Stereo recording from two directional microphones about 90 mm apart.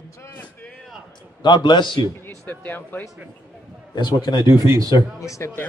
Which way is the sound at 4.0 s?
55° left (ahead or behind).